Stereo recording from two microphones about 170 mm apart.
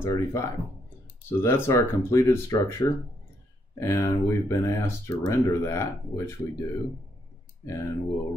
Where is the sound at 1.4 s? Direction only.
15° left (ahead or behind).